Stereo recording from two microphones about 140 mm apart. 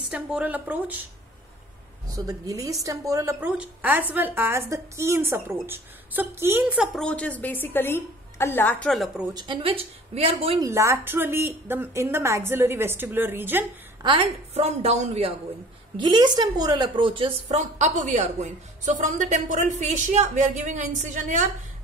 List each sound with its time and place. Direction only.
0.1 s a woman's voice: 10° right (ahead or behind)
2.1 s a woman's voice: 25° right (ahead or behind)
3.3 s a woman's voice: 10° right (ahead or behind)
7.0 s a woman's voice: 10° left (ahead or behind)
9.3 s a woman's voice: 30° right (ahead or behind)
10.6 s a woman's voice: 20° right (ahead or behind)
14.0 s a woman's voice: 40° right (ahead or behind)
16.0 s a woman's voice: 30° right (ahead or behind)
17.6 s a woman's voice: 55° right (ahead or behind)